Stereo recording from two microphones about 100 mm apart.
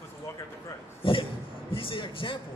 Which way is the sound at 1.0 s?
60° left (ahead or behind).